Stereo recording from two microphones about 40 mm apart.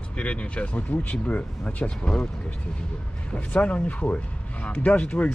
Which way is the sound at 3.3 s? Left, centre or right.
Left.